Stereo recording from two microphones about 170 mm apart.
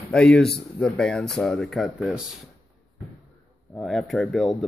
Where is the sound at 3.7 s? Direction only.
Centre (ahead or behind).